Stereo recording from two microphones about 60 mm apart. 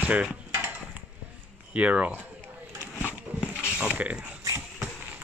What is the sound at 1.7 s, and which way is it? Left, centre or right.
Speech, right.